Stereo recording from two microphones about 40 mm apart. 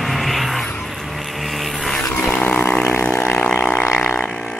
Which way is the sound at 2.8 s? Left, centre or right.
Left.